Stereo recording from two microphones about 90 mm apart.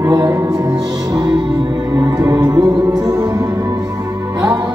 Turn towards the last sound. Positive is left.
turn(degrees=-45)  # may be behind; listen again after turning